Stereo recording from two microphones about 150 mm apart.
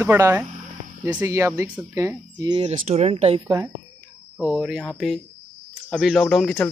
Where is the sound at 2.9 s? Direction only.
45° right (ahead or behind).